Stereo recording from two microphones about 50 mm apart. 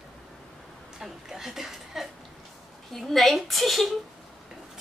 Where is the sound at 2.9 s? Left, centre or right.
Centre.